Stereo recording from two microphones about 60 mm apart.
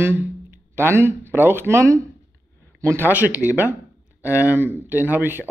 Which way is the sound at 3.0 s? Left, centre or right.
Right.